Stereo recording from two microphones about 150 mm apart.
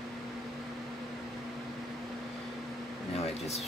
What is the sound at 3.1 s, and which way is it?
Air conditioning, 45° left (ahead or behind).